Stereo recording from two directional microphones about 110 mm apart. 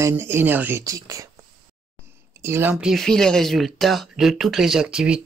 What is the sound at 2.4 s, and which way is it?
Speech, 20° right (ahead or behind).